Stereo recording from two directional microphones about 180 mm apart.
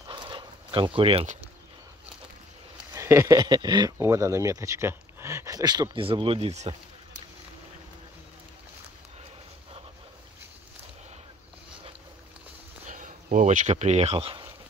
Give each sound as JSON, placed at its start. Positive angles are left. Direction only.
{"t": 0.1, "sound": "dog", "side_deg": -25}
{"t": 2.9, "sound": "speech", "side_deg": -15}
{"t": 12.8, "sound": "speech", "side_deg": -45}